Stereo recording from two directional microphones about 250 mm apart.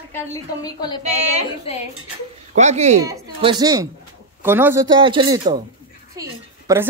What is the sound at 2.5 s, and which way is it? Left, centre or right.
Speech, right.